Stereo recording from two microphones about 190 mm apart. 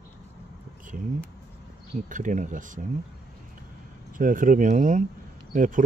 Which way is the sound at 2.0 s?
40° right (ahead or behind).